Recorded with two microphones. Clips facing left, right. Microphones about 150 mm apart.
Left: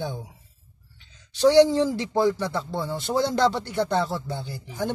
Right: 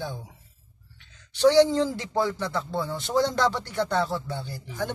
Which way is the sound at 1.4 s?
10° left (ahead or behind).